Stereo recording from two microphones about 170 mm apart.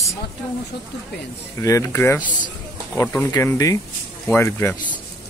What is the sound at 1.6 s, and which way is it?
Speech, 15° left (ahead or behind).